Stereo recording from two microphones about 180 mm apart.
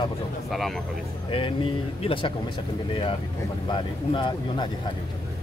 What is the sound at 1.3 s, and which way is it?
Speech, 30° left (ahead or behind).